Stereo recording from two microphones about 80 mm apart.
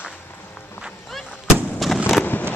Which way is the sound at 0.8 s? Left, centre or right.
Centre.